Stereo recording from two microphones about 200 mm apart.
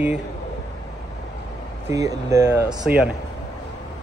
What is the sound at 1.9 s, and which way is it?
A man's voice, 15° right (ahead or behind).